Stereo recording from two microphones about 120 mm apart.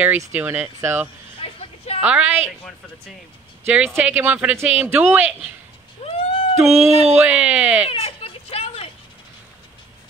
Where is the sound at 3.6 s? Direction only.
15° right (ahead or behind).